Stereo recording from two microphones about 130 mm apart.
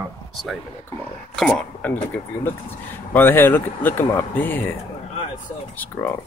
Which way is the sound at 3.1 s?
15° left (ahead or behind).